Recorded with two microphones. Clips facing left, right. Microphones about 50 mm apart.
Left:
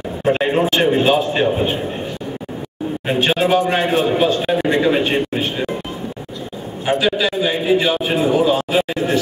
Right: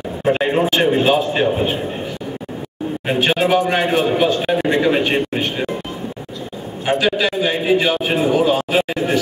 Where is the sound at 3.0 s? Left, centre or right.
Centre.